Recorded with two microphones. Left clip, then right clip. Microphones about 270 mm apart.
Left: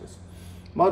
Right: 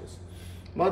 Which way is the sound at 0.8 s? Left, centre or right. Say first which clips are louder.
Left 5 dB; centre.